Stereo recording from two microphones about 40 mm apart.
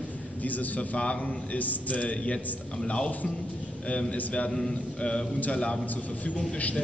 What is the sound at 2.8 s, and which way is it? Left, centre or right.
Speech, left.